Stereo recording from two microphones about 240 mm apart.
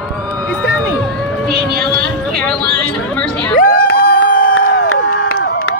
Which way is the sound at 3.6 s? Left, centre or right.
Left.